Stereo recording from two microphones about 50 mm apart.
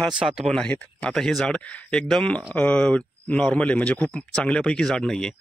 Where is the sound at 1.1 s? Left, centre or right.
Centre.